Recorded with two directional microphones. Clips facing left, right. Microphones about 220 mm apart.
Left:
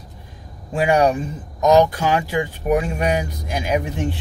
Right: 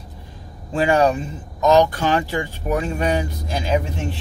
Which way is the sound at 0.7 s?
15° left (ahead or behind).